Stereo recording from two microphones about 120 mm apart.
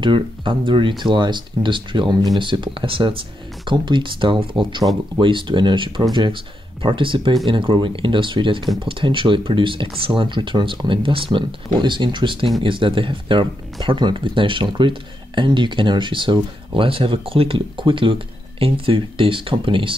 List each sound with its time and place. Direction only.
0.0 s speech: 45° right (ahead or behind)